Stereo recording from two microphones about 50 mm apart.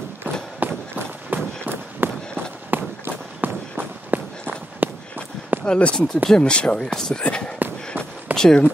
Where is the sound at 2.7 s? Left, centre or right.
Right.